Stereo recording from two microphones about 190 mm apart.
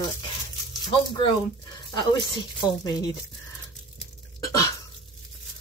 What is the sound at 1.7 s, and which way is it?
Speech, 20° left (ahead or behind).